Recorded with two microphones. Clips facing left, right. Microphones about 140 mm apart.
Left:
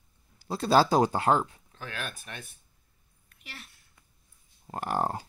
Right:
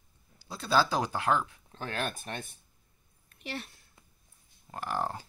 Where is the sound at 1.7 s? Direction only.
35° right (ahead or behind).